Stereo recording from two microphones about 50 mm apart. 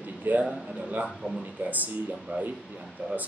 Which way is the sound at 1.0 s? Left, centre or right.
Centre.